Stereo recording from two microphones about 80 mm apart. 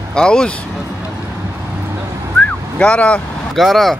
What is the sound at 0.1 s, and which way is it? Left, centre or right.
Speech, centre.